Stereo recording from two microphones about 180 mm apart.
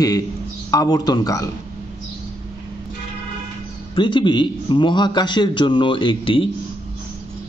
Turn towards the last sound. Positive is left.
turn(degrees=30)  # may be behind; listen again after turning